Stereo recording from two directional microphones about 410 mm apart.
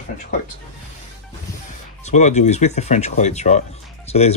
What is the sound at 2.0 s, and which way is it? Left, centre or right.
Speech, centre.